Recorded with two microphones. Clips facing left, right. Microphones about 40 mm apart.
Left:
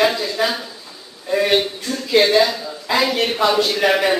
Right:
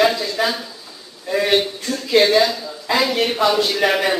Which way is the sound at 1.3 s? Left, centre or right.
Centre.